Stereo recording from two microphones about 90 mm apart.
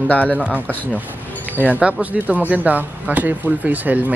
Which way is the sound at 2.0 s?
15° right (ahead or behind).